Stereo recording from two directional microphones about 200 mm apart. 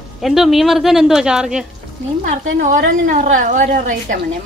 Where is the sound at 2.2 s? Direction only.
40° right (ahead or behind).